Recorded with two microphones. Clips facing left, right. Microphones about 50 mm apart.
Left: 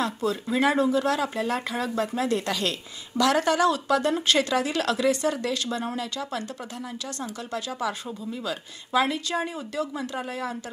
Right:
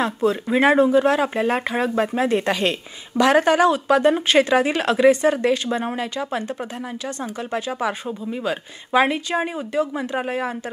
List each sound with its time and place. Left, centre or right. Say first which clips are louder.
0.0 s speech: right 6 dB; right